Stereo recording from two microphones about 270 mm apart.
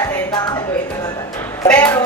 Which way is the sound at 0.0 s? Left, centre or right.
Centre.